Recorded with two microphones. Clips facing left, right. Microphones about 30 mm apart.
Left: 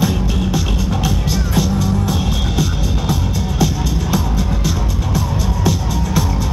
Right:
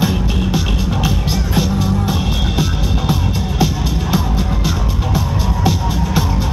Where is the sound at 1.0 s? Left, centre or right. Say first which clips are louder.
Right 1 dB; centre.